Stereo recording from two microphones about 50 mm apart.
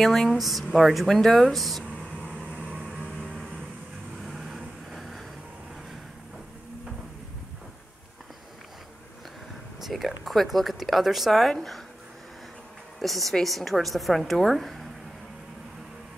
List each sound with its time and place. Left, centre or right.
0.0 s a woman's voice: centre
2.5 s vehicle: right
4.3 s vehicle: centre
9.8 s a woman's voice: centre
13.0 s a woman's voice: centre